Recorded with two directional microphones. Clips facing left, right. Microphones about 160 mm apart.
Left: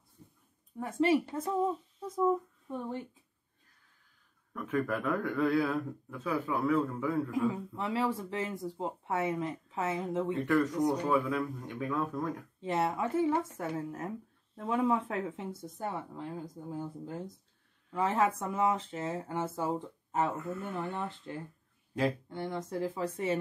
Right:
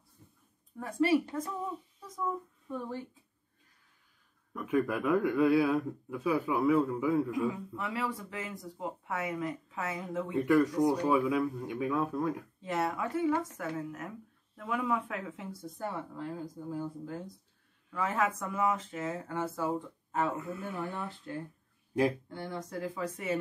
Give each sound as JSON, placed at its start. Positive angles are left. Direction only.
{"t": 0.7, "sound": "speech", "side_deg": 20}
{"t": 4.6, "sound": "a man's voice", "side_deg": -10}
{"t": 7.3, "sound": "speech", "side_deg": 30}
{"t": 10.3, "sound": "a man's voice", "side_deg": -10}
{"t": 12.5, "sound": "speech", "side_deg": 25}
{"t": 21.3, "sound": "speech", "side_deg": 25}